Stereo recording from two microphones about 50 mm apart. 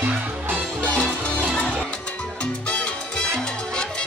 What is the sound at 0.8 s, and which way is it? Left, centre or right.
Music, left.